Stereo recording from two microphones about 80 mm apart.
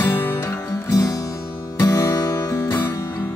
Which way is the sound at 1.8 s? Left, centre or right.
Left.